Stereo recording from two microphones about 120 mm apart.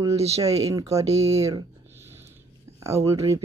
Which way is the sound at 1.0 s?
65° right (ahead or behind).